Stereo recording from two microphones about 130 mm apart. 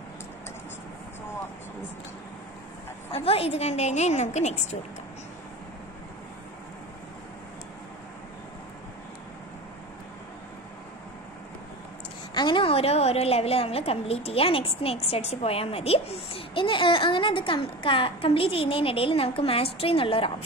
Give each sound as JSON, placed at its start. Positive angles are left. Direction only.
{"t": 3.3, "sound": "a woman's voice", "side_deg": 50}
{"t": 12.4, "sound": "a woman's voice", "side_deg": 40}